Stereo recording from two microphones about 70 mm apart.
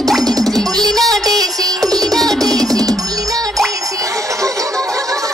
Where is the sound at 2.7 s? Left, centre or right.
Right.